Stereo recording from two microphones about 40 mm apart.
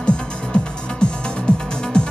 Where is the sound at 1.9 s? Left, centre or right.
Left.